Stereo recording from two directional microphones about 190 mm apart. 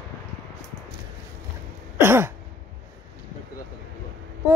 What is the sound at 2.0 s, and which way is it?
Throat clearing, 10° right (ahead or behind).